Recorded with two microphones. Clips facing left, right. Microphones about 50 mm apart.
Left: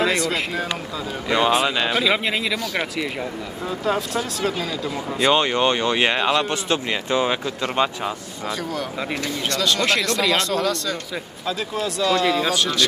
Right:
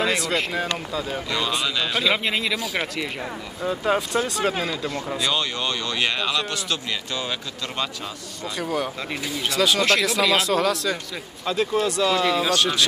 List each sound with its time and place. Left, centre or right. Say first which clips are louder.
0.0 s speech: left 2 dB; centre
5.2 s speech: left 9 dB; left
8.5 s speech: right 3 dB; centre